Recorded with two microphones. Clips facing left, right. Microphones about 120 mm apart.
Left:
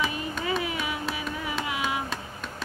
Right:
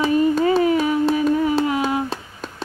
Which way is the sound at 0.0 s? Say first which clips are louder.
Right 13 dB; 35° right (ahead or behind).